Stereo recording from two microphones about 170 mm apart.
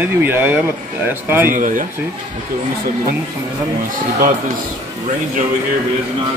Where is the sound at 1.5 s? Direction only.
50° right (ahead or behind).